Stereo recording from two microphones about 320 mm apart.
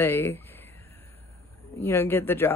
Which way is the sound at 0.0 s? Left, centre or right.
Centre.